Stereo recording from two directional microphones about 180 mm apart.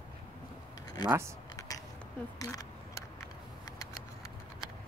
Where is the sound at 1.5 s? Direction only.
20° left (ahead or behind).